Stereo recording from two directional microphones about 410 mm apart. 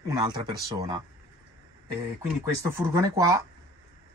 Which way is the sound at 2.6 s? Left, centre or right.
Centre.